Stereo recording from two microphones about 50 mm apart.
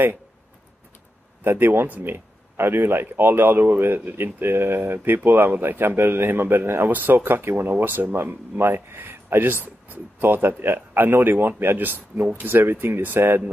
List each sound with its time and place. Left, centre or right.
1.4 s speech: right